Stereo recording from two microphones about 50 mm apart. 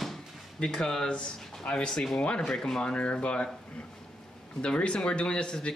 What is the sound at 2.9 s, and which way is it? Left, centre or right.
Speech, left.